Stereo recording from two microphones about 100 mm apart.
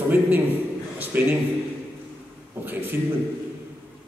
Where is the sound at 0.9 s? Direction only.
20° right (ahead or behind).